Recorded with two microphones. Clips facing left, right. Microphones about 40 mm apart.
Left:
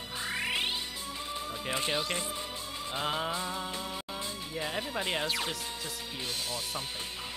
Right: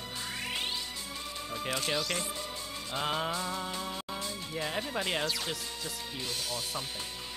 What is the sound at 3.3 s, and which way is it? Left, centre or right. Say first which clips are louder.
Music: even; centre.